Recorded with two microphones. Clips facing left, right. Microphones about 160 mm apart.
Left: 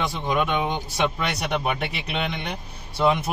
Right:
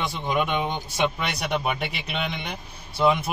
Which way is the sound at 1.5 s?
Centre (ahead or behind).